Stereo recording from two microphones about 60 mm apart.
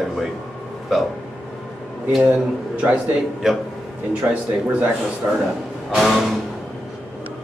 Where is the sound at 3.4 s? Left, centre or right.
Centre.